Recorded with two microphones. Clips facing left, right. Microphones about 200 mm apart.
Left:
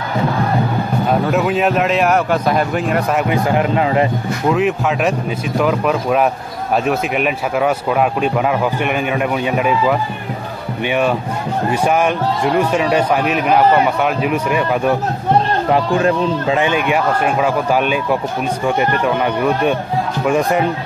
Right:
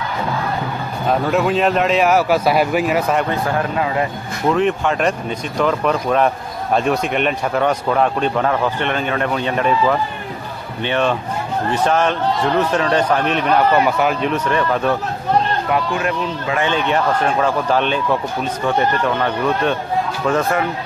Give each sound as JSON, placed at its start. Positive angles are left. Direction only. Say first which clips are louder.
{"t": 1.2, "sound": "speech", "louder": "left 1 dB", "side_deg": 0}
{"t": 3.3, "sound": "speech", "louder": "left 4 dB", "side_deg": 15}
{"t": 4.5, "sound": "a man's voice", "louder": "even", "side_deg": 5}
{"t": 15.7, "sound": "speech", "louder": "left 7 dB", "side_deg": 30}
{"t": 16.6, "sound": "a man's voice", "louder": "left 2 dB", "side_deg": 10}